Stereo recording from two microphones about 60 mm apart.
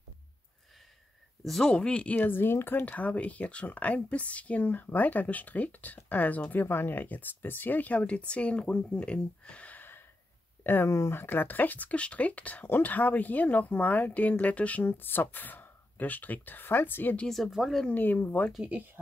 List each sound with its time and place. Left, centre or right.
1.4 s speech: centre
1.7 s speech: centre
2.2 s speech: left
2.8 s speech: left
10.9 s speech: left
11.1 s speech: left
14.9 s speech: left
17.3 s speech: centre
17.8 s speech: left